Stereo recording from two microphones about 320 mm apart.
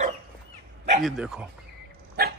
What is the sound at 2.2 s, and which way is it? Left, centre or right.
Dog, right.